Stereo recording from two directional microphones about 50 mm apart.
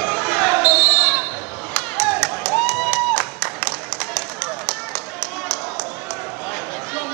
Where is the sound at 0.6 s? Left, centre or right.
Centre.